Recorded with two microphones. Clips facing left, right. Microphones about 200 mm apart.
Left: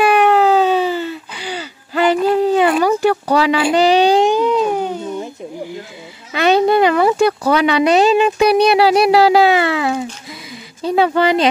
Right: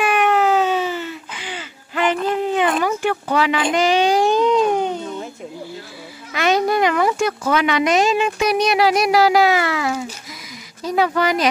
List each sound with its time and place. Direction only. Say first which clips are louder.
0.0 s a sound: left 5 dB; 35° left (ahead or behind)
3.7 s speech: left 5 dB; 35° left (ahead or behind)
4.2 s baby cry: left 1 dB; 10° left (ahead or behind)
6.3 s speech: left 5 dB; 30° left (ahead or behind)